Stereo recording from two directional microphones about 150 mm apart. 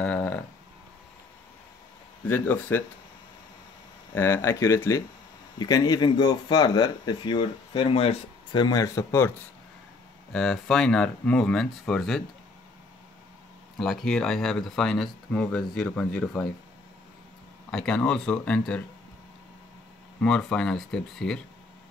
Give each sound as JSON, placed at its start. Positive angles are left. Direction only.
{"t": 0.0, "sound": "a sound", "side_deg": 10}
{"t": 2.2, "sound": "speech", "side_deg": 15}
{"t": 4.1, "sound": "speech", "side_deg": 15}
{"t": 10.3, "sound": "speech", "side_deg": 5}
{"t": 13.7, "sound": "speech", "side_deg": 0}
{"t": 17.6, "sound": "speech", "side_deg": 5}
{"t": 20.2, "sound": "speech", "side_deg": 5}